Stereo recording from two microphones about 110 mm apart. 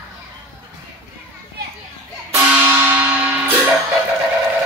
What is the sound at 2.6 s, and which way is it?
Music, 20° right (ahead or behind).